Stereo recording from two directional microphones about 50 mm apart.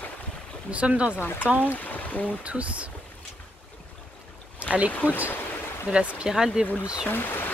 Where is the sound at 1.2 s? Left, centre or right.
Left.